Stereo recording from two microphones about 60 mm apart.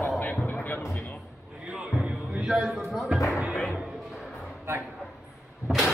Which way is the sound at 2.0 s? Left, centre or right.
Centre.